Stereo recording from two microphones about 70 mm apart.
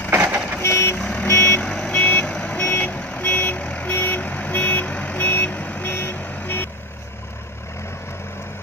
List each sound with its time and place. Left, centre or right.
0.1 s vehicle: right
0.6 s vehicle: left